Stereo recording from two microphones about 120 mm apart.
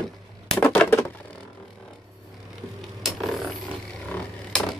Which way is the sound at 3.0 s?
Centre (ahead or behind).